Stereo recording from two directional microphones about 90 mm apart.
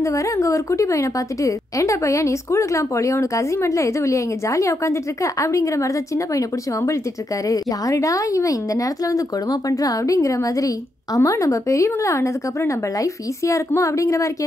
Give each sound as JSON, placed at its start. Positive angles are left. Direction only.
{"t": 0.0, "sound": "a woman's voice", "side_deg": 35}